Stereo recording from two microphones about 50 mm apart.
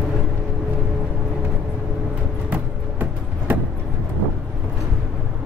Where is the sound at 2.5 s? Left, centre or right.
Right.